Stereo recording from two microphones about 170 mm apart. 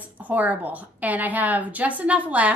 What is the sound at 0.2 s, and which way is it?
A woman's voice, 10° right (ahead or behind).